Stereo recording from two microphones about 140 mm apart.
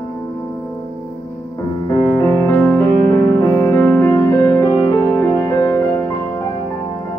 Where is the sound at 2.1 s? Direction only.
20° left (ahead or behind).